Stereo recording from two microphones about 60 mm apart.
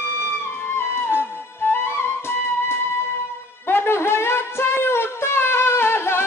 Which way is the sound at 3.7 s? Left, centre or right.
Left.